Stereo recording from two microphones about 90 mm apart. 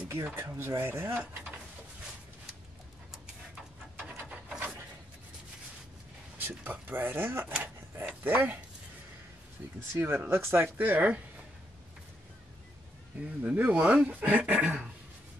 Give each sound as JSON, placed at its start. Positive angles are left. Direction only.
{"t": 0.1, "sound": "speech", "side_deg": -30}
{"t": 4.0, "sound": "wood", "side_deg": -10}
{"t": 6.4, "sound": "speech", "side_deg": -20}
{"t": 7.6, "sound": "a sound", "side_deg": -25}
{"t": 8.1, "sound": "speech", "side_deg": -20}
{"t": 9.9, "sound": "speech", "side_deg": -25}
{"t": 13.2, "sound": "speech", "side_deg": -15}